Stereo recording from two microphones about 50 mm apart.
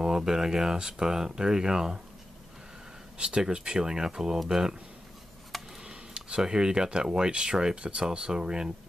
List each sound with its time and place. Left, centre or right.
0.0 s speech: centre
3.2 s speech: centre
5.5 s a sound: centre
5.9 s speech: centre